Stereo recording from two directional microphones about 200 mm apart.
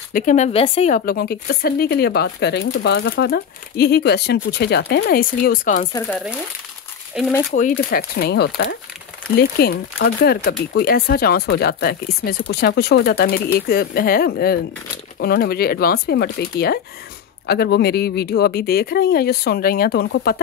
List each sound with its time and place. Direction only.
0.1 s speech: 40° left (ahead or behind)
7.2 s speech: 5° right (ahead or behind)
7.5 s speech: 45° left (ahead or behind)